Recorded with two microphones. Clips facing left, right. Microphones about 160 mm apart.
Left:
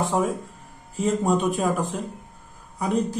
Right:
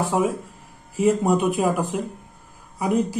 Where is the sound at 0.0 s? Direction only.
10° right (ahead or behind).